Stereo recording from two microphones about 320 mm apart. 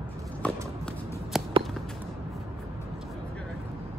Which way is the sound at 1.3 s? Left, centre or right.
Centre.